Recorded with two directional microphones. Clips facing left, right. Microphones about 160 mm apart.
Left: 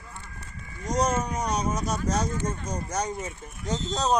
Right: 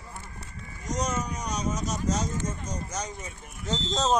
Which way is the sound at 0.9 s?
55° left (ahead or behind).